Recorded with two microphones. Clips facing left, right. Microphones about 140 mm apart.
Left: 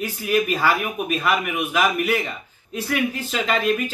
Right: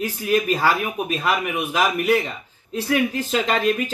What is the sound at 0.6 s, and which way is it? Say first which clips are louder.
Speech: right 1 dB; 35° right (ahead or behind).